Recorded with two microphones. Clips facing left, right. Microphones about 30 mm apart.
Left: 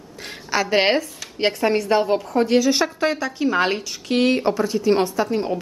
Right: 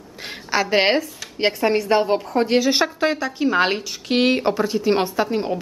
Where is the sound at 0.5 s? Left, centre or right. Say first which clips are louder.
Even; centre.